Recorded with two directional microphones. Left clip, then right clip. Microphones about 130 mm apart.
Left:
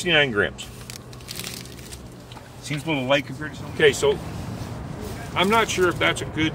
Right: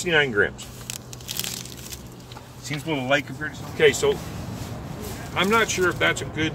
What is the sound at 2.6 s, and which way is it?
Speech, 40° left (ahead or behind).